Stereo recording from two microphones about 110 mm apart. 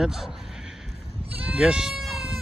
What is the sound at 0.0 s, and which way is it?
Speech, 5° right (ahead or behind).